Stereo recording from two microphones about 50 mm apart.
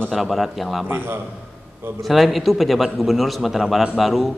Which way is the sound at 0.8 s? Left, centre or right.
Right.